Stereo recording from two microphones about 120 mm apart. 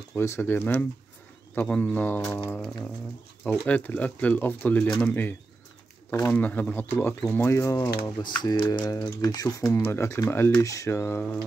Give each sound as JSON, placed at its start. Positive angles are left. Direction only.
{"t": 0.1, "sound": "speech", "side_deg": 25}
{"t": 3.6, "sound": "speech", "side_deg": 15}
{"t": 7.7, "sound": "speech", "side_deg": 35}